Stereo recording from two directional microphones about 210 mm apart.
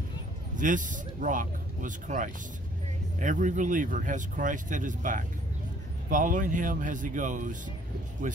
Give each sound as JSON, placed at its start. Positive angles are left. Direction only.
{"t": 0.6, "sound": "speech", "side_deg": -40}